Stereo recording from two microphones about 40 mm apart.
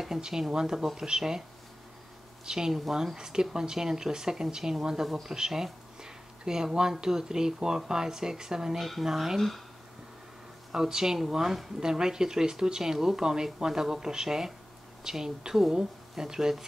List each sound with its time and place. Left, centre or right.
0.0 s speech: centre
2.4 s speech: centre
5.0 s speech: centre
5.3 s speech: centre
10.7 s speech: centre